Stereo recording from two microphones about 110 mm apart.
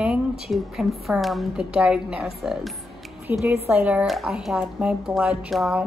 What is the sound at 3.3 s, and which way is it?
Speech, 20° right (ahead or behind).